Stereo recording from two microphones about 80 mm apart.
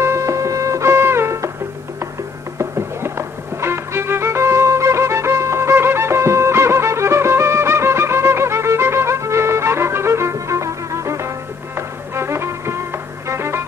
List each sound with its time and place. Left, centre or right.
0.0 s music: right
2.6 s music: right